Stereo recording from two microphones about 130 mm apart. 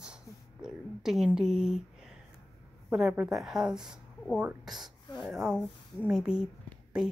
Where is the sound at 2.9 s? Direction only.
5° right (ahead or behind).